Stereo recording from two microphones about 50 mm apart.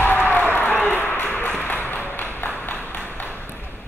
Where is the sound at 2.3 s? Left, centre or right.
Left.